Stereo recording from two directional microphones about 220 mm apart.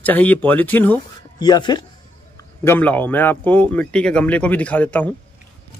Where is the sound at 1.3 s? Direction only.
20° left (ahead or behind).